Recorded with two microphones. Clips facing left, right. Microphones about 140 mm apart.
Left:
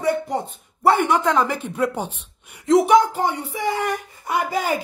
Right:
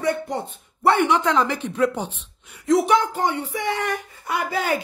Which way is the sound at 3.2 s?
10° left (ahead or behind).